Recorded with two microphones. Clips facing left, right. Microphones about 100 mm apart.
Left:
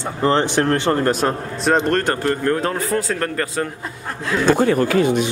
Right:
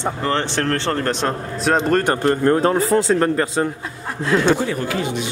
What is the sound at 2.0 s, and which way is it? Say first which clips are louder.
A man's voice: right 3 dB; 25° right (ahead or behind).